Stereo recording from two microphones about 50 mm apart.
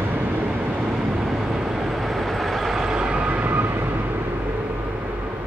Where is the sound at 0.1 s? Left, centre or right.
Right.